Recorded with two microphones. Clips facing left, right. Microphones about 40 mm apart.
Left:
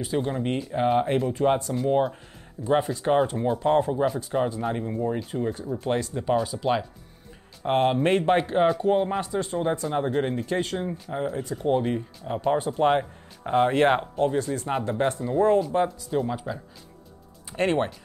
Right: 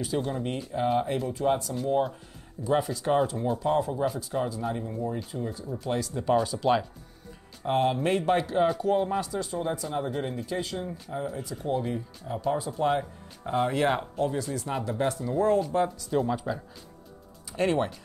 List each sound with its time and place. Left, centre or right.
0.2 s speech: left
6.5 s speech: centre
7.6 s speech: left
11.3 s speech: left
16.1 s speech: centre
17.5 s speech: left